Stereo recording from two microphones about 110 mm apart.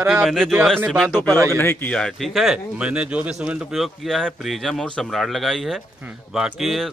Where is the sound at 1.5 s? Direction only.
20° left (ahead or behind).